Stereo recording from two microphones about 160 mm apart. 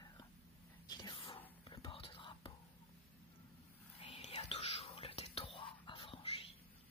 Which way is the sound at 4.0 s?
40° left (ahead or behind).